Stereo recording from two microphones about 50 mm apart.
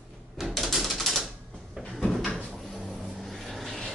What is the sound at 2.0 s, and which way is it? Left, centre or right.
Cupboard open or close, centre.